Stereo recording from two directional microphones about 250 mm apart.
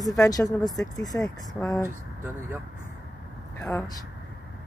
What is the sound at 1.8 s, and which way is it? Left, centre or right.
Speech, centre.